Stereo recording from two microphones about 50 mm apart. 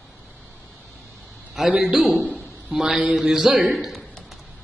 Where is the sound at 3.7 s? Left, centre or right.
Centre.